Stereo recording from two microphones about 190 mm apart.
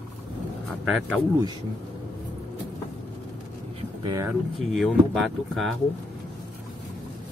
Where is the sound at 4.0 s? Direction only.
25° right (ahead or behind).